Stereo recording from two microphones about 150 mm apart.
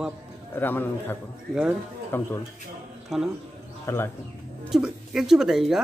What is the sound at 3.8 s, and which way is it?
Speech, 15° left (ahead or behind).